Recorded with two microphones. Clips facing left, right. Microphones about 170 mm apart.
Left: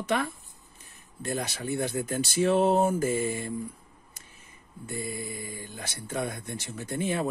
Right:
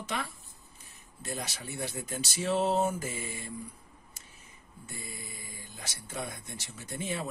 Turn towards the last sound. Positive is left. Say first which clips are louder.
# left 7 dB
turn(degrees=55)  # may be behind; listen again after turning